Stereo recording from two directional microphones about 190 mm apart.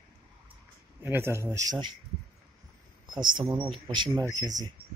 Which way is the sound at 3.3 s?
25° right (ahead or behind).